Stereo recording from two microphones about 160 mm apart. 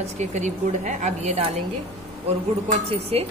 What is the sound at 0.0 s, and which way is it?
Speech, 45° right (ahead or behind).